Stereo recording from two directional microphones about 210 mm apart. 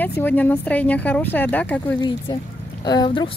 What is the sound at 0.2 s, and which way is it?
Speech, 10° left (ahead or behind).